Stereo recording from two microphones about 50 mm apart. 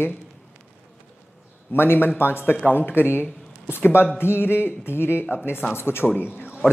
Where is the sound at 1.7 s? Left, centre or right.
Left.